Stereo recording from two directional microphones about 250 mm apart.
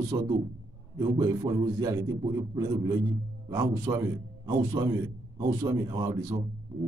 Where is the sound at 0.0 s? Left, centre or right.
Centre.